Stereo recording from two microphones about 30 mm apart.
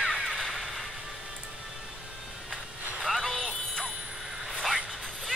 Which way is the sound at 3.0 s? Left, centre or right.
Centre.